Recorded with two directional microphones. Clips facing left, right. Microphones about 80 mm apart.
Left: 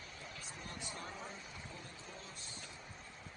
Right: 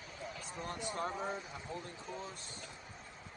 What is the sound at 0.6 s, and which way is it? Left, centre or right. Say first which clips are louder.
Speech: right 10 dB; right.